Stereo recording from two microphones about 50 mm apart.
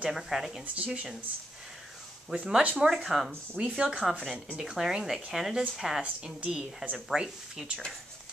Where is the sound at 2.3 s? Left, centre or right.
Centre.